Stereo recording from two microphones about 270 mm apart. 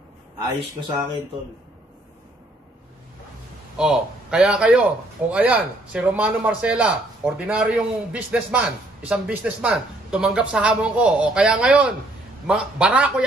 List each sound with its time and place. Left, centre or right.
0.7 s speech: centre
3.7 s a man's voice: centre